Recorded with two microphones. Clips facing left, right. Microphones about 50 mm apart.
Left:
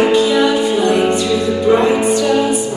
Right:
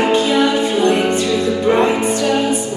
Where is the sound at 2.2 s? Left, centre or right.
Right.